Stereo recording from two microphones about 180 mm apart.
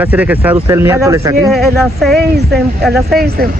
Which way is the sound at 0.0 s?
10° right (ahead or behind).